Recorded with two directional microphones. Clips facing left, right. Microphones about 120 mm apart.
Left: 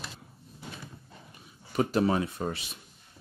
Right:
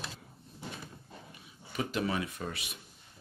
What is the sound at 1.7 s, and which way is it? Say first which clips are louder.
Speech: left 7 dB; 40° left (ahead or behind).